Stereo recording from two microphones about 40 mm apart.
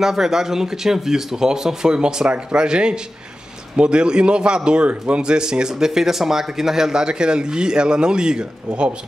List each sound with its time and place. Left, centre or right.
0.0 s a man's voice: centre; by 8.9 s right